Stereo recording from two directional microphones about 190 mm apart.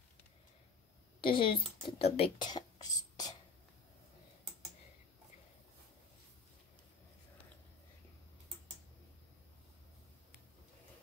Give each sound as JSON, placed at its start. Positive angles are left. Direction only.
{"t": 1.2, "sound": "speech", "side_deg": 25}